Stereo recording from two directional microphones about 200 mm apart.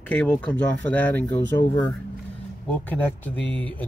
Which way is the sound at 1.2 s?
20° left (ahead or behind).